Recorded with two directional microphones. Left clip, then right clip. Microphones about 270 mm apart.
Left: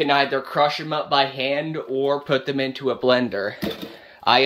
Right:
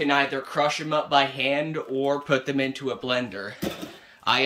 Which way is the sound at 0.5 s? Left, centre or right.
Centre.